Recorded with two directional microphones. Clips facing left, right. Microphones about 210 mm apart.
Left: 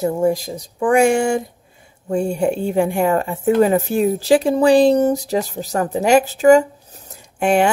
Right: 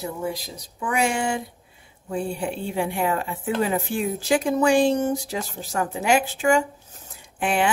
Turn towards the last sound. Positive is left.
turn(degrees=45)  # may be behind; listen again after turning